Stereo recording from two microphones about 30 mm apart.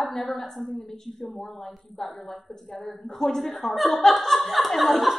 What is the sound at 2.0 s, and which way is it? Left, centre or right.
A woman's voice, centre.